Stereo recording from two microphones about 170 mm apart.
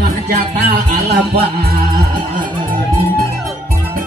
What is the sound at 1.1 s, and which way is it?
Music, 65° right (ahead or behind).